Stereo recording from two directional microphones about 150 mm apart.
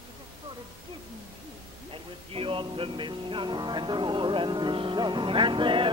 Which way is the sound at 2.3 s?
35° right (ahead or behind).